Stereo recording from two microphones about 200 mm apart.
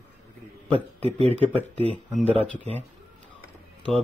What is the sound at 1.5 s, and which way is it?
Speech, 30° right (ahead or behind).